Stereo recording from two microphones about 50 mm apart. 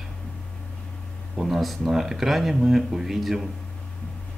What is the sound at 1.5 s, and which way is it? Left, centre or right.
A man's voice, centre.